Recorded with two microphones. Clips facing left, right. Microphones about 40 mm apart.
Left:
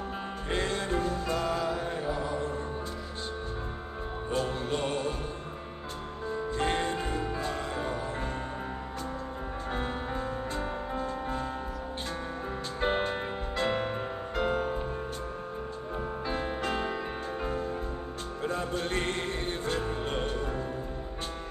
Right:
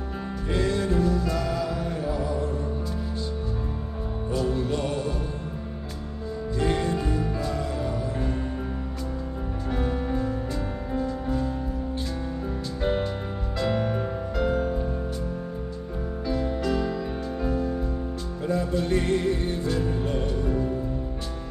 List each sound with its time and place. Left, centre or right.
0.5 s music: left
4.3 s music: left
6.6 s music: left
9.7 s music: left
12.8 s music: left
14.3 s music: left
16.3 s music: left